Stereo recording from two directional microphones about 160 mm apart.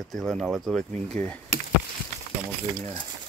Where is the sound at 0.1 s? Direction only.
Centre (ahead or behind).